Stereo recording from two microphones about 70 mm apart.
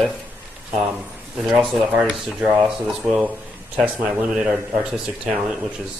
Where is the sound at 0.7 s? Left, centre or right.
Centre.